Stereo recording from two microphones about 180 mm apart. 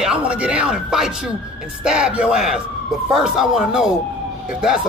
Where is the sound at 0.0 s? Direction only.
5° right (ahead or behind).